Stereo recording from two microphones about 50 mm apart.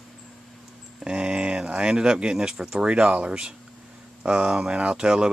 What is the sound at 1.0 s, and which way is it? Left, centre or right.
Speech, centre.